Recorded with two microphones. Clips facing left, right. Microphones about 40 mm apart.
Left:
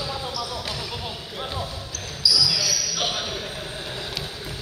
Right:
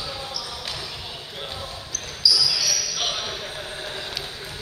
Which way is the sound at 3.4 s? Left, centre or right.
Centre.